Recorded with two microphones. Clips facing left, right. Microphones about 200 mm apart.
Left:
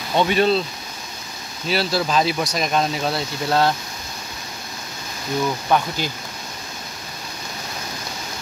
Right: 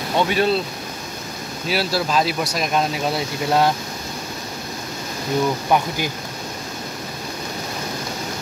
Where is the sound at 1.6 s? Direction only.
5° right (ahead or behind).